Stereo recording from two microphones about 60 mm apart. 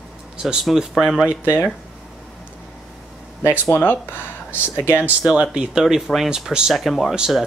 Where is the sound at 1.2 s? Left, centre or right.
Right.